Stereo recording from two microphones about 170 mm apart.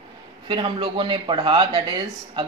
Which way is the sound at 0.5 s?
30° right (ahead or behind).